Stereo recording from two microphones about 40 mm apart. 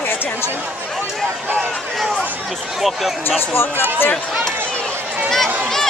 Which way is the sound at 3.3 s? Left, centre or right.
Left.